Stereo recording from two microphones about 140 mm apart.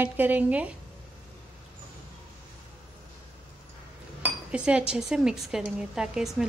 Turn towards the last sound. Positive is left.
turn(degrees=-5)  # may be behind; listen again after turning